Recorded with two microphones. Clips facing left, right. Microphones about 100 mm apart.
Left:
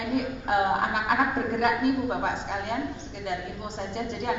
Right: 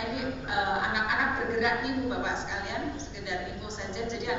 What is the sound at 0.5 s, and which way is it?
A woman's voice, 45° left (ahead or behind).